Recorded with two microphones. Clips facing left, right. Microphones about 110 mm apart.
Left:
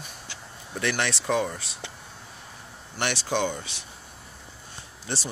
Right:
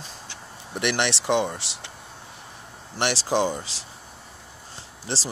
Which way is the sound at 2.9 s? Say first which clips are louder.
Right 4 dB; 30° right (ahead or behind).